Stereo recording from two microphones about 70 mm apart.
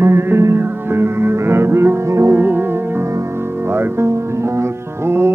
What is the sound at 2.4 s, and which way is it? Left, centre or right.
Music, right.